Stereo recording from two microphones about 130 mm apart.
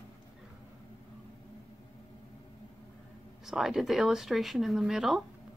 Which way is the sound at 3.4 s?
Centre (ahead or behind).